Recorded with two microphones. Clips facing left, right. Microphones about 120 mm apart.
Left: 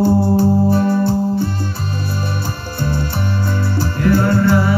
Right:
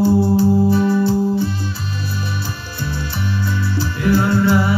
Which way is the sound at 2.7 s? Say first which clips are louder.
Left 5 dB; 50° left (ahead or behind).